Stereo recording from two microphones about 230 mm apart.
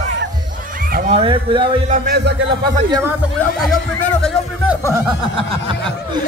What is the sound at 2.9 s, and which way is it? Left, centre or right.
Speech, centre.